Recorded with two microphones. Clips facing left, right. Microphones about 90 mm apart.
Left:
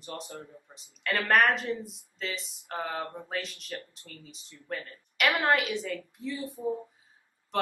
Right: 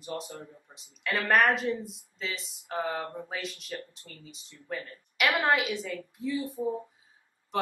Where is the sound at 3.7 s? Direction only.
20° right (ahead or behind).